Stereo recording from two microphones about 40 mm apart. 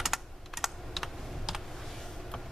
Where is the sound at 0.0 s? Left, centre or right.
Centre.